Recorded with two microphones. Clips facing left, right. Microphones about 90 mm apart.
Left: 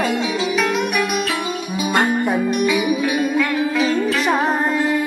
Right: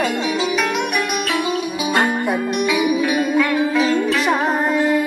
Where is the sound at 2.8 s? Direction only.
Centre (ahead or behind).